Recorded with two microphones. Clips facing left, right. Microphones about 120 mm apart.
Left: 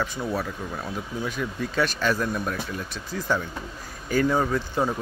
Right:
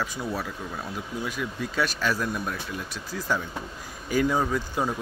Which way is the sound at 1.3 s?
5° right (ahead or behind).